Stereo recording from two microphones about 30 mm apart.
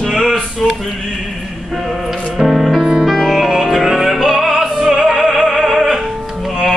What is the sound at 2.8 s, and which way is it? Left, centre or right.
Music, centre.